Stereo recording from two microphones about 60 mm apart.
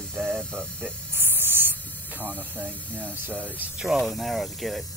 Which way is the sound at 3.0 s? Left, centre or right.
Right.